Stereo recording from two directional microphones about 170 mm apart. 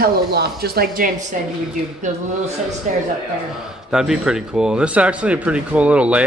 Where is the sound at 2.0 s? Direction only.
45° right (ahead or behind).